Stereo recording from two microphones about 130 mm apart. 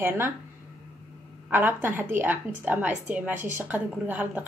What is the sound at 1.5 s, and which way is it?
A woman's voice, 15° right (ahead or behind).